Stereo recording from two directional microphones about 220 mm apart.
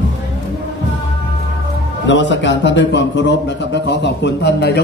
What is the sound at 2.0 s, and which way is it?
A man's voice, 55° left (ahead or behind).